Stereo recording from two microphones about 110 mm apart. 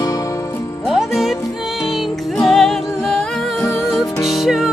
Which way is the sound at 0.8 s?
Centre (ahead or behind).